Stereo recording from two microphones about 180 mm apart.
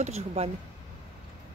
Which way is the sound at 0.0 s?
40° right (ahead or behind).